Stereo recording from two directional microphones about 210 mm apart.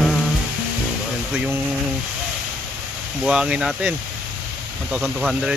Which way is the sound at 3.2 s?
5° right (ahead or behind).